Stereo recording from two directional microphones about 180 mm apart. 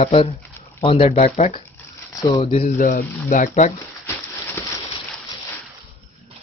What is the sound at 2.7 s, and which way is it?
Speech, 50° left (ahead or behind).